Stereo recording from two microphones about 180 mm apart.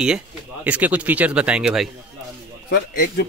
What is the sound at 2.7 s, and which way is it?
Speech, 60° left (ahead or behind).